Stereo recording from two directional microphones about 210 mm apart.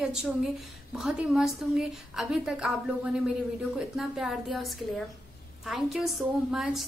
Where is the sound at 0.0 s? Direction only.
5° right (ahead or behind).